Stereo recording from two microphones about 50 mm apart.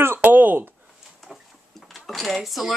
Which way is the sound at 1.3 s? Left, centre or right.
Centre.